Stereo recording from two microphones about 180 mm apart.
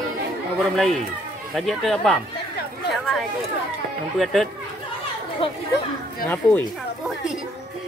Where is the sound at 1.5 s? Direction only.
Centre (ahead or behind).